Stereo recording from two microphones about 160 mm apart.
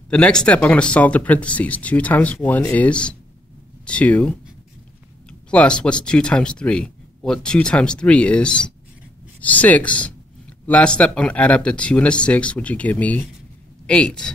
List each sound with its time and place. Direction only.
0.1 s speech: 5° left (ahead or behind)
5.5 s speech: 5° left (ahead or behind)